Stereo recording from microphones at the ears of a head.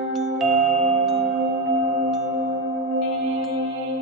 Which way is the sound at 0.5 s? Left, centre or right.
Right.